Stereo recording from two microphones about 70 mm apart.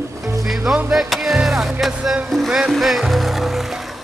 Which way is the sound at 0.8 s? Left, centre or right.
Centre.